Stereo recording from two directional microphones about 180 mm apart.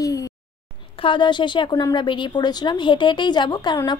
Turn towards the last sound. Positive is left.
turn(degrees=25)  # may be behind; listen again after turning